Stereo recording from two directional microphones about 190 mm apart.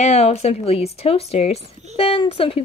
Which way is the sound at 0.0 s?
35° left (ahead or behind).